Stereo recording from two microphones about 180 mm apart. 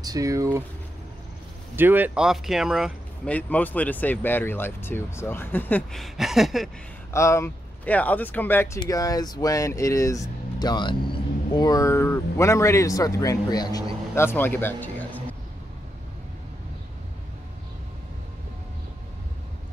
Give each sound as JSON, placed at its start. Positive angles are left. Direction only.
{"t": 0.0, "sound": "speech", "side_deg": -20}
{"t": 1.8, "sound": "speech", "side_deg": -10}
{"t": 7.1, "sound": "speech", "side_deg": 15}